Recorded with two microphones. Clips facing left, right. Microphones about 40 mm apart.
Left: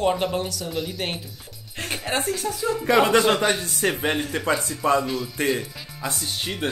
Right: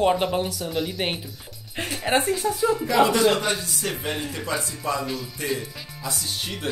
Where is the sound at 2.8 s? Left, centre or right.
Left.